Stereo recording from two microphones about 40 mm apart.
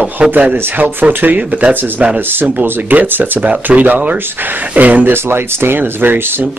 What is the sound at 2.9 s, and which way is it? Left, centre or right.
Speech, right.